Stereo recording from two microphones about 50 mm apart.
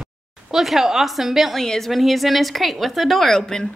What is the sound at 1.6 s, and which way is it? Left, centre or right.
A woman's voice, centre.